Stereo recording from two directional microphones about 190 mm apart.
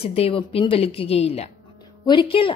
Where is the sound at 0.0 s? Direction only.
30° left (ahead or behind).